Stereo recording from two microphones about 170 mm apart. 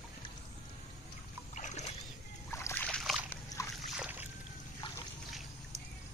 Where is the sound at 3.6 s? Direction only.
20° left (ahead or behind).